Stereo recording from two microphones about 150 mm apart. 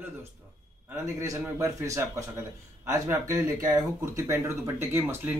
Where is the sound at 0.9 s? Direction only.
20° right (ahead or behind).